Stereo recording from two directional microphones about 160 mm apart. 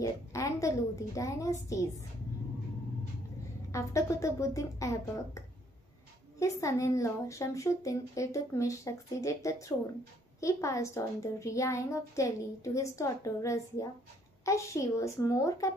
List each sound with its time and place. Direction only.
0.0 s a woman's voice: 20° left (ahead or behind)
3.7 s a woman's voice: 20° left (ahead or behind)
6.4 s a woman's voice: 20° left (ahead or behind)